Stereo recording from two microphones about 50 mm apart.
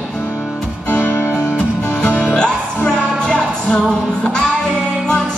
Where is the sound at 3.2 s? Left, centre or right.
Left.